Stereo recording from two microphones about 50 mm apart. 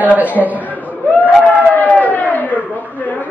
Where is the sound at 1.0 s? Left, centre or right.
Left.